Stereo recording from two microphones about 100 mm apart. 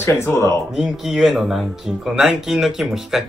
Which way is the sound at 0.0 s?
25° left (ahead or behind).